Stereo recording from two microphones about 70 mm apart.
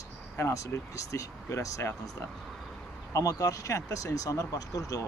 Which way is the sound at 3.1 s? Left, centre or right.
Left.